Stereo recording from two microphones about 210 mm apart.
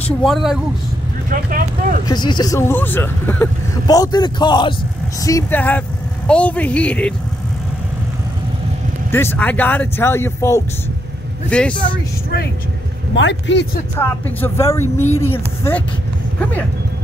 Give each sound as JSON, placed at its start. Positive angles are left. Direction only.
{"t": 0.2, "sound": "speech", "side_deg": 0}
{"t": 1.3, "sound": "speech", "side_deg": -40}
{"t": 2.0, "sound": "a man's voice", "side_deg": 20}
{"t": 9.1, "sound": "speech", "side_deg": 10}
{"t": 13.1, "sound": "speech", "side_deg": 60}
{"t": 13.9, "sound": "speech", "side_deg": 10}